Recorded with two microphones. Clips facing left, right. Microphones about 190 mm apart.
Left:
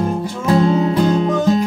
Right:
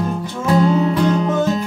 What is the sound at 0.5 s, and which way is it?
Music, 25° left (ahead or behind).